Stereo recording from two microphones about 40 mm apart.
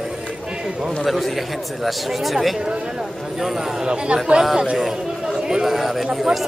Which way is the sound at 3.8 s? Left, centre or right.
Right.